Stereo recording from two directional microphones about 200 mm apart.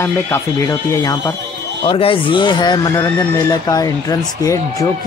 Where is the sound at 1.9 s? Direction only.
25° left (ahead or behind).